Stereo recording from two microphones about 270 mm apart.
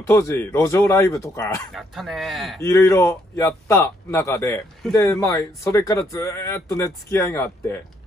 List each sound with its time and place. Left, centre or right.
0.0 s speech: centre
1.8 s speech: centre
2.6 s speech: centre